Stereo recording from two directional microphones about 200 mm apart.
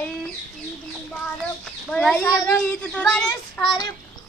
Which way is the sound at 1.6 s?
5° left (ahead or behind).